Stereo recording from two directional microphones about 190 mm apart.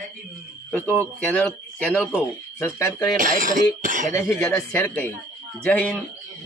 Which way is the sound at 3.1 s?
45° right (ahead or behind).